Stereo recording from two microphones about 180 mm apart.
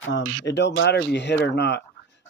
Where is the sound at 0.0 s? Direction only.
85° left.